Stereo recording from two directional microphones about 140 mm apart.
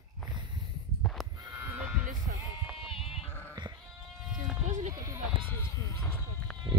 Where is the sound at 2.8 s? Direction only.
40° left (ahead or behind).